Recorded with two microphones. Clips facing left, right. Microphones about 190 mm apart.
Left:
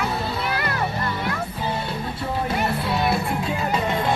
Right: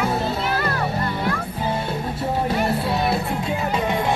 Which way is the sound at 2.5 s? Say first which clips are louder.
Right 2 dB; 30° right (ahead or behind).